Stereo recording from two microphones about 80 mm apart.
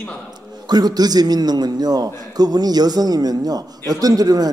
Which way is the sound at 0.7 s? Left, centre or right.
Right.